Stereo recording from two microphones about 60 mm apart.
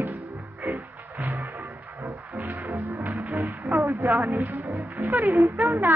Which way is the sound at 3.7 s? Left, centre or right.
Right.